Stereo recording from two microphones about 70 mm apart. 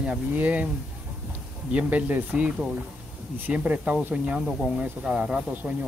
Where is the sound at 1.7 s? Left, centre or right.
Centre.